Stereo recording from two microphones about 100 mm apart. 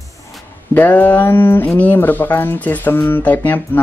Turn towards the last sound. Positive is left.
turn(degrees=15)  # may be behind; listen again after turning